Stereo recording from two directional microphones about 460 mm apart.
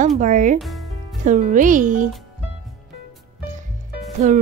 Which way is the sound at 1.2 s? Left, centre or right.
Centre.